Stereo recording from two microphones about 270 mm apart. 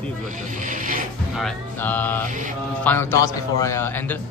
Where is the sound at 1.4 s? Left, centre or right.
Centre.